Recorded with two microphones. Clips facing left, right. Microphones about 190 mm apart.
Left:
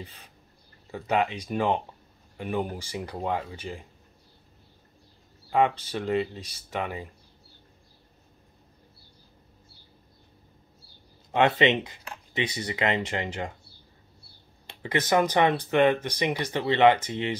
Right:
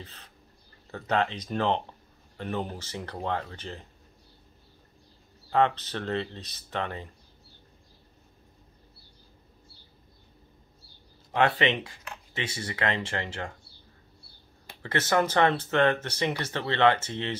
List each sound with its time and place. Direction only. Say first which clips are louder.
0.0 s speech: left 3 dB; 10° left (ahead or behind)
5.5 s speech: left 1 dB; 10° left (ahead or behind)
11.3 s speech: left 3 dB; 20° left (ahead or behind)
14.8 s speech: left 2 dB; 15° left (ahead or behind)